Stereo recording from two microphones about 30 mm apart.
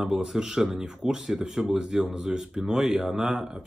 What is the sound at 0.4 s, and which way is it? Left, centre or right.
Speech, centre.